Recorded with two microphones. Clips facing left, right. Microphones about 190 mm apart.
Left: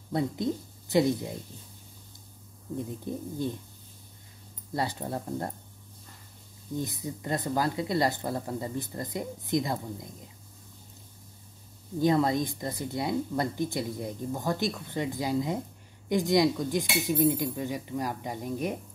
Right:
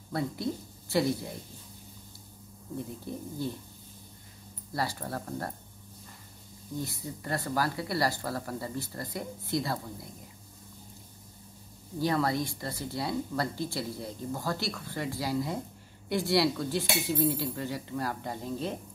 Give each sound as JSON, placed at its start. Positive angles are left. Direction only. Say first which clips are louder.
{"t": 0.1, "sound": "speech", "louder": "left 3 dB", "side_deg": 20}
{"t": 2.8, "sound": "speech", "louder": "left 3 dB", "side_deg": 20}
{"t": 4.7, "sound": "speech", "louder": "left 2 dB", "side_deg": 20}
{"t": 6.7, "sound": "speech", "louder": "left 3 dB", "side_deg": 20}
{"t": 12.0, "sound": "speech", "louder": "left 4 dB", "side_deg": 20}